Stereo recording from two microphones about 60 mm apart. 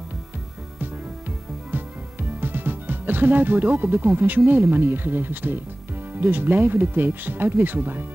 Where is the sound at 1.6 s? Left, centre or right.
Right.